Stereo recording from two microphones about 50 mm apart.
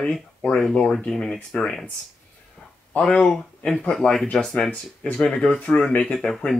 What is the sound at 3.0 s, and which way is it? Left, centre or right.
Speech, centre.